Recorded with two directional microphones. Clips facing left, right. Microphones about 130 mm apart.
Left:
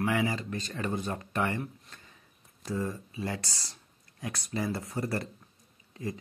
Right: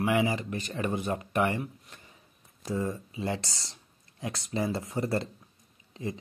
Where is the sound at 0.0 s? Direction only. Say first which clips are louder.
Right 3 dB; 15° right (ahead or behind).